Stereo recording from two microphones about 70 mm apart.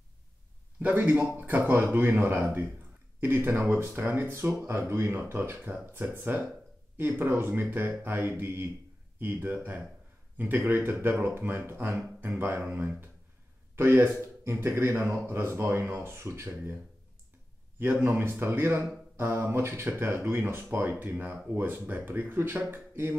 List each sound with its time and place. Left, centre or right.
0.7 s speech: right
17.7 s speech: right